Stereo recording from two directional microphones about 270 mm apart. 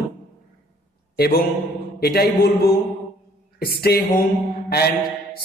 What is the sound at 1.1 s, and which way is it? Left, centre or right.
A man's voice, left.